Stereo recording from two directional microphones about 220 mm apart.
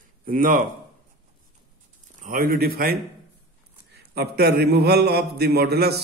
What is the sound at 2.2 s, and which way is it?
A man's voice, 40° right (ahead or behind).